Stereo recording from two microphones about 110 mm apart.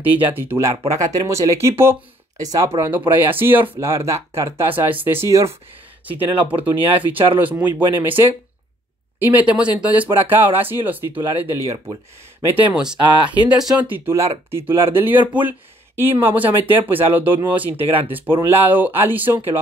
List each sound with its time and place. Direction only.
0.0 s speech: 15° right (ahead or behind)
0.6 s speech: 30° right (ahead or behind)
2.4 s speech: 35° right (ahead or behind)
2.8 s speech: 15° right (ahead or behind)
9.2 s speech: 10° right (ahead or behind)
11.7 s speech: 35° right (ahead or behind)
12.5 s speech: 10° right (ahead or behind)